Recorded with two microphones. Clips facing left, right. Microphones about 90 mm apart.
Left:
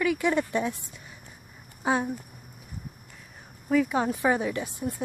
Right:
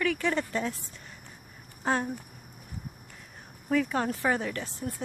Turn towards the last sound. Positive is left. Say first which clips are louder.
# left 4 dB
turn(degrees=15)  # may be behind; listen again after turning